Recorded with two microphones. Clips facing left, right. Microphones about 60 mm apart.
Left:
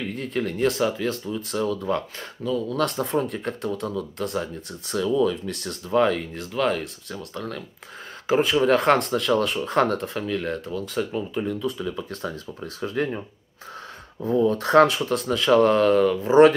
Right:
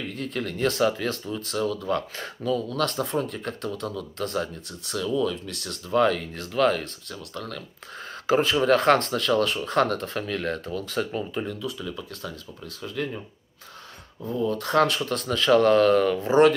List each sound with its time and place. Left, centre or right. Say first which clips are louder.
0.1 s speech: left 3 dB; centre
1.6 s speech: left 1 dB; centre
2.1 s speech: even; centre
2.7 s speech: left 2 dB; centre
7.1 s speech: left 3 dB; left
8.3 s speech: left 1 dB; centre
11.8 s speech: left 5 dB; centre
12.1 s speech: left 5 dB; left
14.5 s speech: left 4 dB; left
14.9 s speech: left 3 dB; centre